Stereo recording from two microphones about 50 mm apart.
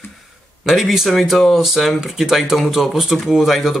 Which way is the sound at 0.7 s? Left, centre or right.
Centre.